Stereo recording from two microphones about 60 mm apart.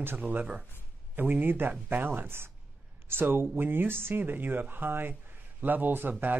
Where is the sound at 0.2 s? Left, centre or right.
Right.